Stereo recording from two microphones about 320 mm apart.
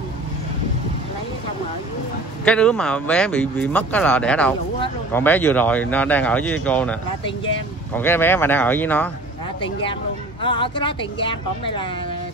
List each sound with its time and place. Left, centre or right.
2.4 s speech: centre
4.7 s a sound: centre
5.2 s speech: centre
10.4 s speech: centre